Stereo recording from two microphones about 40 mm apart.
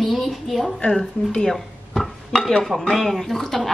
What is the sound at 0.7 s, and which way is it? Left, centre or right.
Speech, centre.